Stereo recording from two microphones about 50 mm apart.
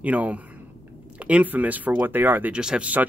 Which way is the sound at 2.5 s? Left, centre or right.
Centre.